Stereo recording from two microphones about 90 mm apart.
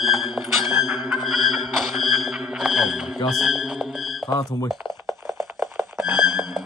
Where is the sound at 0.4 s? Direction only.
10° right (ahead or behind).